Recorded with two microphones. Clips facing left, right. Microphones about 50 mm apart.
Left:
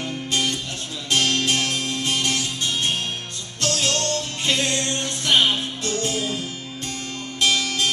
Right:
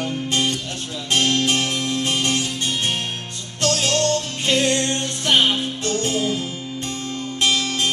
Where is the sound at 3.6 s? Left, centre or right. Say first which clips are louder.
Right 4 dB; right.